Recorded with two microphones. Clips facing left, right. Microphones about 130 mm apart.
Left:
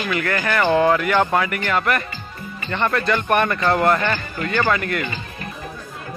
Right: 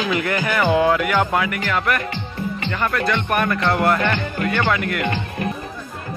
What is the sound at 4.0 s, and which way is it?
Speech, 65° right (ahead or behind).